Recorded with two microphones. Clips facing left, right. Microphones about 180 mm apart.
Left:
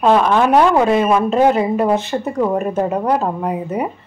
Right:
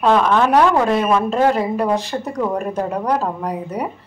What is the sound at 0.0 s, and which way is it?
A woman's voice, 10° left (ahead or behind).